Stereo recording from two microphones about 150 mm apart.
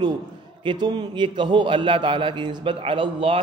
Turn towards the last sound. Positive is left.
turn(degrees=-35)  # may be behind; listen again after turning